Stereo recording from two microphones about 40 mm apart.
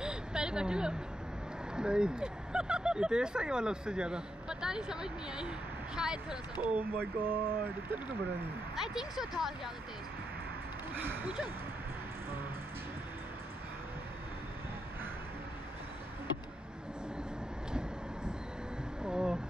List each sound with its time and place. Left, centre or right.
0.0 s vehicle: right
1.8 s speech: right
6.6 s speech: right
8.9 s speech: centre
19.0 s a sound: right